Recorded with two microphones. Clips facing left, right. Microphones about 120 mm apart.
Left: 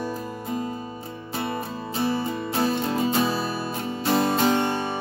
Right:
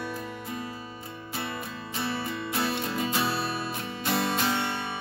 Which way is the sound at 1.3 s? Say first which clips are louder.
Left 7 dB; 40° left (ahead or behind).